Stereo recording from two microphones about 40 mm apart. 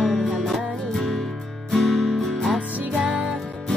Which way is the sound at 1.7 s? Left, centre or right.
Centre.